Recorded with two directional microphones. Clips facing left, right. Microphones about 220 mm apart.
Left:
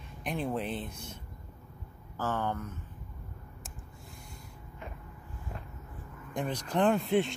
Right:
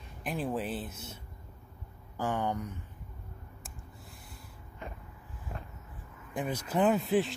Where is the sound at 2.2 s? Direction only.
15° right (ahead or behind).